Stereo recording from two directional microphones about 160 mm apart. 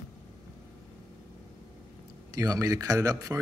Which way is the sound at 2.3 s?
25° right (ahead or behind).